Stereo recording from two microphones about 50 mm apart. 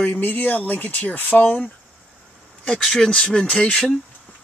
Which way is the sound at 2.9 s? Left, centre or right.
Centre.